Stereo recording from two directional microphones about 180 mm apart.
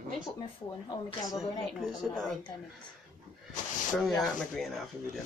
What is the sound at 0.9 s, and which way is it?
Speech, 20° left (ahead or behind).